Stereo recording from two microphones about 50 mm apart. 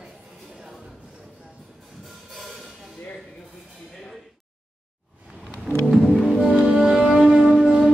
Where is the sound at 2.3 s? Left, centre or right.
Centre.